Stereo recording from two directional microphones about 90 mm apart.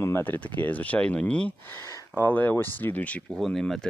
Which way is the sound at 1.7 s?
30° left (ahead or behind).